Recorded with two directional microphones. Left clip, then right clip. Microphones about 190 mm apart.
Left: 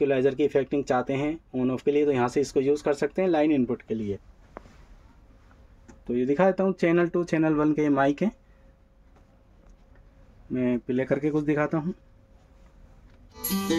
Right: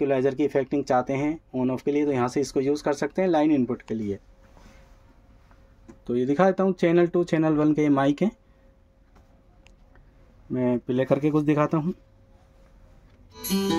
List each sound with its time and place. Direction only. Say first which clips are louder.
0.0 s speech: even; 10° right (ahead or behind)
6.0 s speech: right 1 dB; 20° right (ahead or behind)
10.5 s speech: right 2 dB; 15° right (ahead or behind)